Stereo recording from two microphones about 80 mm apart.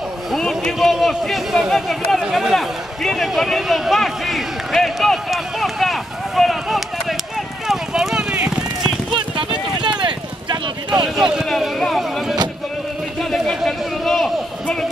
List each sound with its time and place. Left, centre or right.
0.3 s speech: centre
7.6 s clip-clop: centre
9.8 s clip-clop: right
11.1 s speech: centre
11.4 s a sound: centre